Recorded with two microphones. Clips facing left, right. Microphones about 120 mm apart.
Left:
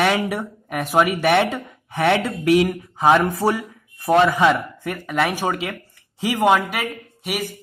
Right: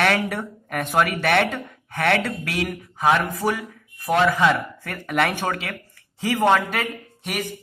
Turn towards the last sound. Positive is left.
turn(degrees=5)  # may be behind; listen again after turning